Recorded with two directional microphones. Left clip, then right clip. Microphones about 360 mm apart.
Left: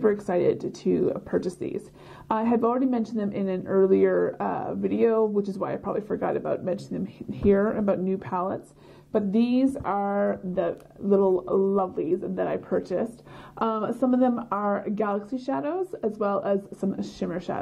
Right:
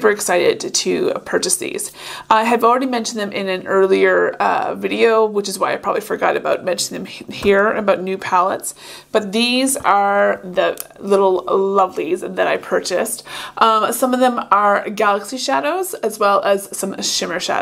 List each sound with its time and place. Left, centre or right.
0.0 s speech: centre
11.2 s speech: centre
11.7 s speech: centre